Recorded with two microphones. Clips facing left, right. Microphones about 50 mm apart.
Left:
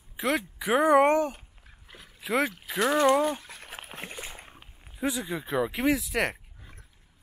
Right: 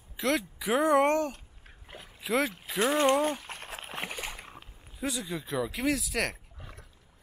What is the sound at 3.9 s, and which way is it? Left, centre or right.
Rowboat, right.